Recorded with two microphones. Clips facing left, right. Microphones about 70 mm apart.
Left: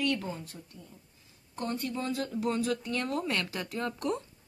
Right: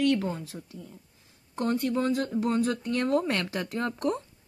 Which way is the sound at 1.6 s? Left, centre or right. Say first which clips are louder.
Right 7 dB; right.